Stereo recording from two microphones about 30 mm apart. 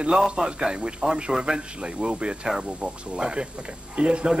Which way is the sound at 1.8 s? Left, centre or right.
Right.